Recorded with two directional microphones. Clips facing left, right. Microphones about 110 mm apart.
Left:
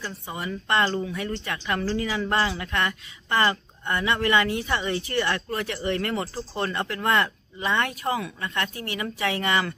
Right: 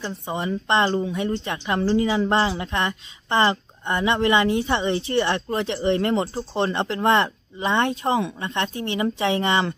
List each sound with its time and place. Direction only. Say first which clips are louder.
0.0 s a woman's voice: right 6 dB; 25° right (ahead or behind)